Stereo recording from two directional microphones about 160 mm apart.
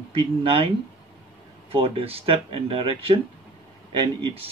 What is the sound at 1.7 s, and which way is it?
Speech, 35° right (ahead or behind).